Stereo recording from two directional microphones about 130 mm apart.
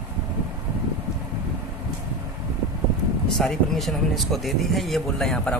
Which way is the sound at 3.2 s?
5° left (ahead or behind).